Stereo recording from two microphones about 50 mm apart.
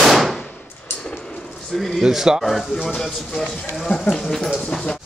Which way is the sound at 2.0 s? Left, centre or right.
Centre.